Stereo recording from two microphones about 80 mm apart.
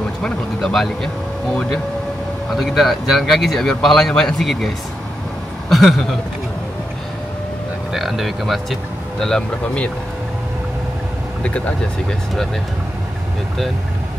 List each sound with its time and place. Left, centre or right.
0.2 s speech: centre
7.9 s speech: centre
11.4 s speech: centre